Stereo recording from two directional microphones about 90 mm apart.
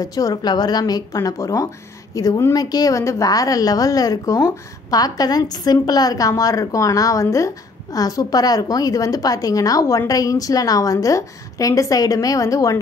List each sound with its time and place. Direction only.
0.0 s a woman's voice: 45° left (ahead or behind)